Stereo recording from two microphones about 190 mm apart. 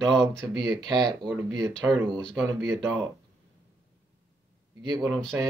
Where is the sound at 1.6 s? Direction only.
5° left (ahead or behind).